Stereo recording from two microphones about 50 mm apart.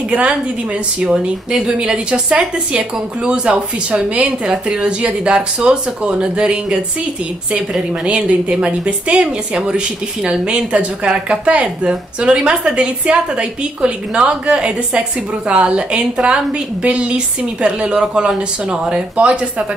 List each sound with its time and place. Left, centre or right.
0.1 s a woman's voice: right
8.0 s a woman's voice: right